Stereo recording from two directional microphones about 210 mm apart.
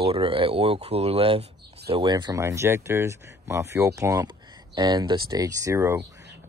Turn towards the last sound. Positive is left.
turn(degrees=-15)  # may be behind; listen again after turning